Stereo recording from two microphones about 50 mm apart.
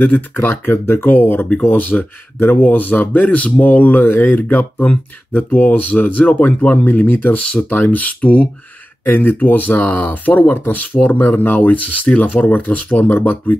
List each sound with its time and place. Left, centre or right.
0.0 s speech: left
3.6 s speech: left
9.0 s speech: left